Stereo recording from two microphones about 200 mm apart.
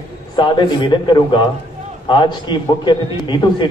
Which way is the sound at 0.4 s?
25° left (ahead or behind).